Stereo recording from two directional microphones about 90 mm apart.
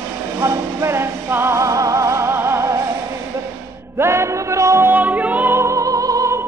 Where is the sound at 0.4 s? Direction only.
35° right (ahead or behind).